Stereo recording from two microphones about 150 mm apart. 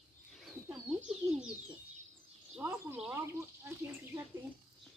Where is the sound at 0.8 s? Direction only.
5° right (ahead or behind).